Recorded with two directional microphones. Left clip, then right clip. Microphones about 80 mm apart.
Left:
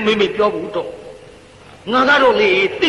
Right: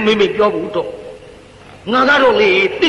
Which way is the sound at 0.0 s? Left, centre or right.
Left.